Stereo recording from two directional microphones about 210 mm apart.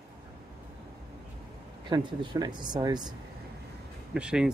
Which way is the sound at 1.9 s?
20° right (ahead or behind).